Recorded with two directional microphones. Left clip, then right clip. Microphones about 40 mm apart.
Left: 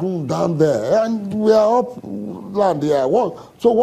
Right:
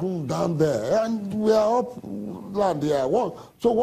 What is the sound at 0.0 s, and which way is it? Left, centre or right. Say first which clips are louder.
A man's voice: left 6 dB; left.